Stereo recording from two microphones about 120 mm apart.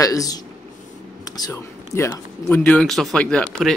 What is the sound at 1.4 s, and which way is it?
Speech, 25° left (ahead or behind).